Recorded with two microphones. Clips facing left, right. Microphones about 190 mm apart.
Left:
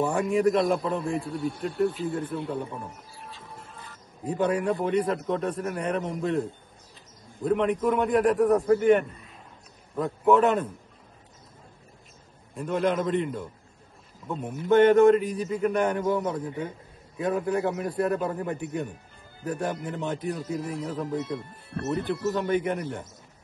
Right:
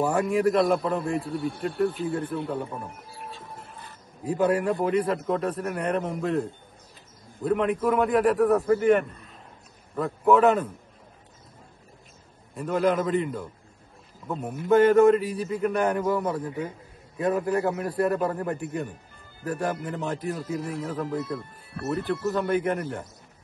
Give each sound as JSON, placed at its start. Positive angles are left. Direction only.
{"t": 0.0, "sound": "a man's voice", "side_deg": -5}
{"t": 3.3, "sound": "a sound", "side_deg": -55}
{"t": 4.2, "sound": "a man's voice", "side_deg": -5}
{"t": 12.5, "sound": "a man's voice", "side_deg": -5}